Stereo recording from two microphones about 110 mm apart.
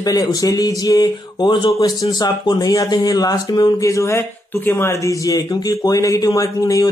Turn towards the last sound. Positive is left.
turn(degrees=30)  # may be behind; listen again after turning